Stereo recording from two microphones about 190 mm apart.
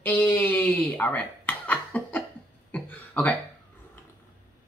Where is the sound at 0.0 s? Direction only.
10° left (ahead or behind).